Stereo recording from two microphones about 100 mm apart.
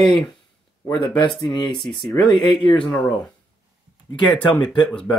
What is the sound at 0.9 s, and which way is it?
Speech, 50° left (ahead or behind).